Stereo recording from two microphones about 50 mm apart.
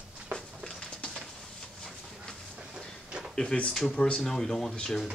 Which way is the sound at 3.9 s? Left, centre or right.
Centre.